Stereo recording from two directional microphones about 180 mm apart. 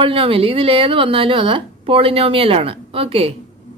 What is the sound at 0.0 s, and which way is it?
Speech, 30° right (ahead or behind).